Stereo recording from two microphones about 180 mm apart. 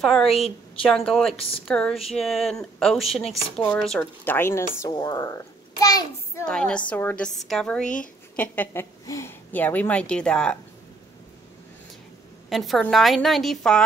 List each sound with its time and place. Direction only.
0.0 s a woman's voice: centre (ahead or behind); by 6.4 s 20° left (ahead or behind)
6.4 s a woman's voice: 5° left (ahead or behind)
12.4 s a woman's voice: centre (ahead or behind)